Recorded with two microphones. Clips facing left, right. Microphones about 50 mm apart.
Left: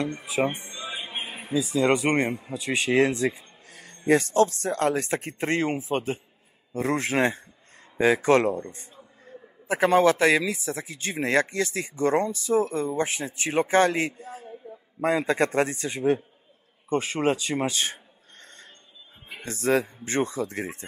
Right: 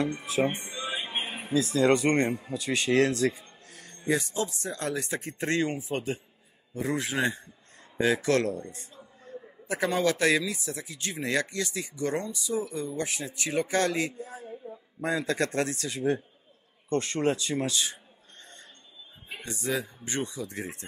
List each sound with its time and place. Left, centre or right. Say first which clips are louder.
0.0 s speech: even; centre
0.7 s music: right 1 dB; centre
1.5 s speech: left 1 dB; centre
3.6 s music: left 5 dB; left
4.1 s speech: left 8 dB; left
5.4 s a man's voice: left 1 dB; left
6.7 s a man's voice: left 5 dB; left
8.0 s a man's voice: left 5 dB; left
16.9 s speech: left 2 dB; centre
17.5 s a man's voice: left 3 dB; left
17.7 s a sound: left 3 dB; left
19.4 s speech: left 8 dB; left
20.2 s a man's voice: left 7 dB; left